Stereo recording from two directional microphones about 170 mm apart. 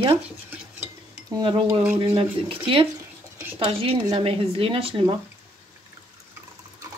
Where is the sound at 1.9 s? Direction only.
30° right (ahead or behind).